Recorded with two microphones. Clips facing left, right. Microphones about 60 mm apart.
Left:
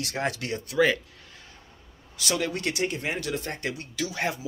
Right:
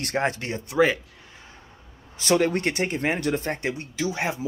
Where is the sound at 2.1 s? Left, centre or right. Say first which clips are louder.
Right 7 dB; right.